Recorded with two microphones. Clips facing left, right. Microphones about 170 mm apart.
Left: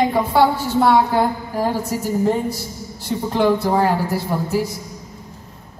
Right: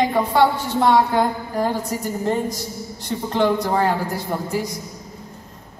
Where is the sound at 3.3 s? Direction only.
5° left (ahead or behind).